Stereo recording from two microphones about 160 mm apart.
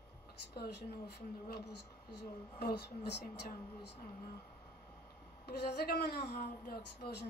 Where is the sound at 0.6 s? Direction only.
90° left.